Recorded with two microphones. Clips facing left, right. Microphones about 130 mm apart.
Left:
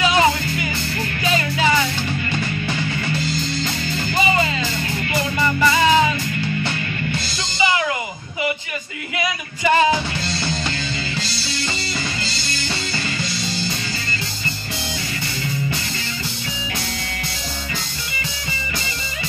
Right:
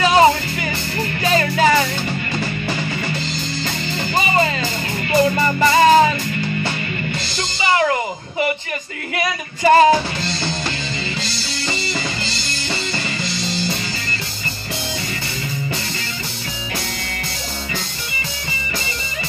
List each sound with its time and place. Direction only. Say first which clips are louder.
0.0 s music: right 4 dB; 40° right (ahead or behind)
4.1 s music: right 1 dB; 35° right (ahead or behind)
7.6 s a sound: right 3 dB; 40° right (ahead or behind)
9.1 s female singing: right 2 dB; 40° right (ahead or behind)